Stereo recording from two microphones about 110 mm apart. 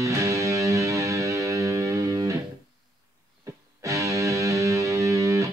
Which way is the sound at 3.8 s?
30° right (ahead or behind).